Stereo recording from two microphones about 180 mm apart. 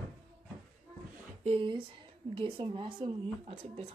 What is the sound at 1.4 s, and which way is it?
Speech, 30° right (ahead or behind).